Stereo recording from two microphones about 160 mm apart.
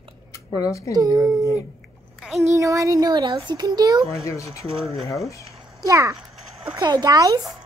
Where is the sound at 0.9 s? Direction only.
20° right (ahead or behind).